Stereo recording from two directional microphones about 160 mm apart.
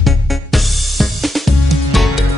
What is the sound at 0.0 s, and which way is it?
Music, centre (ahead or behind).